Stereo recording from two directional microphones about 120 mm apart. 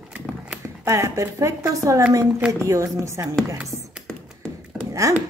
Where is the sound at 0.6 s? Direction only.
25° right (ahead or behind).